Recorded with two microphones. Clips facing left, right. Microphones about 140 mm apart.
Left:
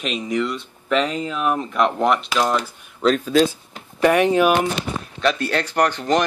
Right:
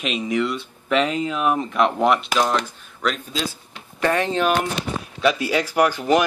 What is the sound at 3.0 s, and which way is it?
Speech, 25° left (ahead or behind).